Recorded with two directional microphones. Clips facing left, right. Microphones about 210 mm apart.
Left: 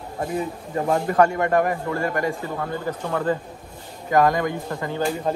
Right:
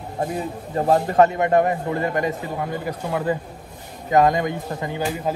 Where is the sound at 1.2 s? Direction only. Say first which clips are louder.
Right 1 dB; 20° right (ahead or behind).